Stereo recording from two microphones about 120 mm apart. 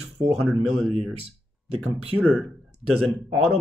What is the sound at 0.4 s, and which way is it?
Speech, centre (ahead or behind).